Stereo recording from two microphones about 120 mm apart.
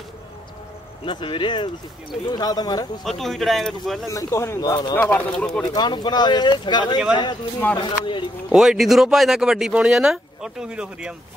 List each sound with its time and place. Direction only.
1.0 s speech: 45° left (ahead or behind)
3.0 s speech: centre (ahead or behind)
4.1 s speech: 25° left (ahead or behind)
4.9 s speech: 10° left (ahead or behind)
5.7 s speech: 35° left (ahead or behind)
8.5 s speech: 5° right (ahead or behind)